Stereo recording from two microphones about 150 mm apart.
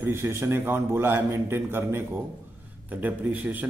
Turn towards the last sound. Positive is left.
turn(degrees=-10)  # may be behind; listen again after turning